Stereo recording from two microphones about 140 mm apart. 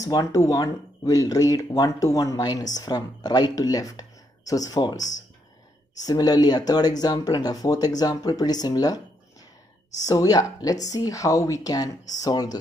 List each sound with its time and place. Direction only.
0.0 s speech: 25° left (ahead or behind)
6.0 s speech: 25° left (ahead or behind)